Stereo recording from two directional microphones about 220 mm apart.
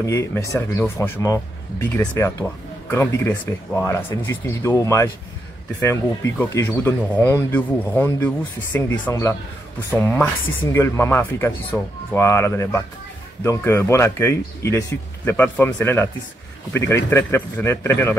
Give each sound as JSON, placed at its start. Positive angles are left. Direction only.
{"t": 0.0, "sound": "speech", "side_deg": 15}